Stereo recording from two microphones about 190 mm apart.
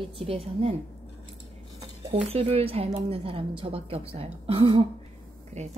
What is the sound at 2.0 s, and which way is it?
Speech, 30° right (ahead or behind).